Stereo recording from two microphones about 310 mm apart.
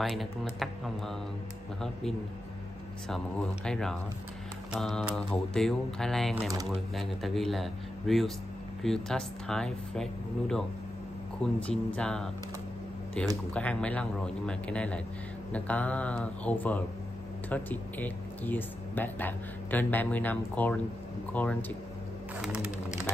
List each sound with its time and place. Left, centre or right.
0.0 s speech: centre
3.6 s speech: centre
11.4 s speech: centre
13.5 s speech: centre